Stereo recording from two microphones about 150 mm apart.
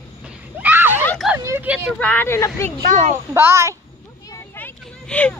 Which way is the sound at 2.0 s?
15° left (ahead or behind).